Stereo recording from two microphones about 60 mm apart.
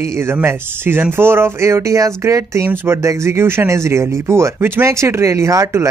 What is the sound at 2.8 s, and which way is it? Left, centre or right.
Speech, right.